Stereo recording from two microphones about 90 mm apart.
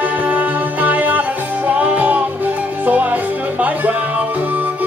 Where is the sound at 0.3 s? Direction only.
20° right (ahead or behind).